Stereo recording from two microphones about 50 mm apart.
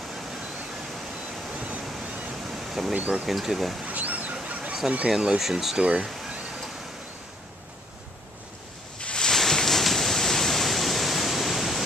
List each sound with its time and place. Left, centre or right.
1.5 s waves: right
2.4 s a sound: centre
2.9 s speech: right
3.3 s speech: centre
3.8 s a sound: right
4.5 s fowl: right
4.8 s speech: right
5.4 s speech: centre
5.8 s speech: centre
6.0 s a sound: centre
9.0 s pink noise: centre